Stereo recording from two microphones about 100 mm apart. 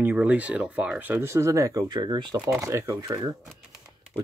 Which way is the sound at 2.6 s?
30° right (ahead or behind).